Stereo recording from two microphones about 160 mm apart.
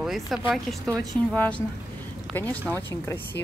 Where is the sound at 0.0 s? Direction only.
Centre (ahead or behind); by 3.2 s 15° left (ahead or behind).